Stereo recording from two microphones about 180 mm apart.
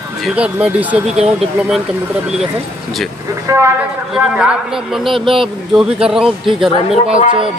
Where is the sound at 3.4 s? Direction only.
15° right (ahead or behind).